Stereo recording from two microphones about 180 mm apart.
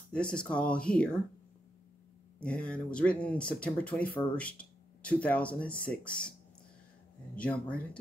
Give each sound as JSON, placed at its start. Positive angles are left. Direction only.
{"t": 0.1, "sound": "speech", "side_deg": 5}
{"t": 2.4, "sound": "speech", "side_deg": 5}
{"t": 7.3, "sound": "speech", "side_deg": 5}